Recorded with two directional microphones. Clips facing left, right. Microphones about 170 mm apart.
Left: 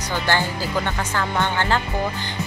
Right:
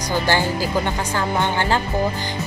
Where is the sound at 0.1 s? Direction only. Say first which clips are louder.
Right 3 dB; 10° right (ahead or behind).